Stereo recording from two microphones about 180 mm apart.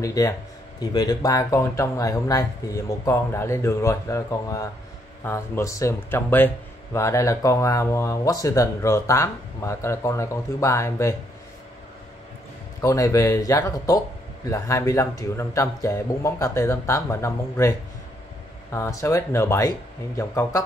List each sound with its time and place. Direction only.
0.0 s speech: 20° left (ahead or behind)
12.8 s speech: 15° left (ahead or behind)